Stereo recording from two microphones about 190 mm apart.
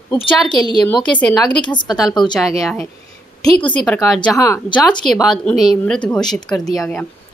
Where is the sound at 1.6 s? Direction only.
25° left (ahead or behind).